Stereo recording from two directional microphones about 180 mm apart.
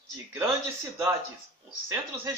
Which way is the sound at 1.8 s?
15° right (ahead or behind).